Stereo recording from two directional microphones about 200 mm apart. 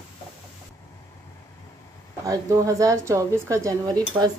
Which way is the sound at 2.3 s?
15° right (ahead or behind).